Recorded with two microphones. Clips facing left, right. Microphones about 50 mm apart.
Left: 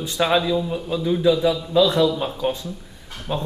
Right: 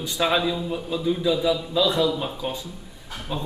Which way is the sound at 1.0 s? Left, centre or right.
Centre.